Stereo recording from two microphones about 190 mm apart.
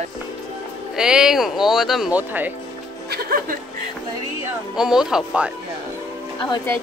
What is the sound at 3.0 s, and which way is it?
Music, 55° right (ahead or behind).